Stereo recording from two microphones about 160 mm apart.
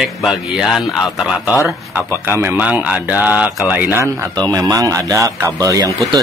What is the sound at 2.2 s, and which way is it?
Speech, 15° right (ahead or behind).